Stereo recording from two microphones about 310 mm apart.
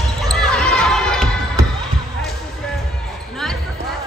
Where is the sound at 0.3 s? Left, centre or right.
Centre.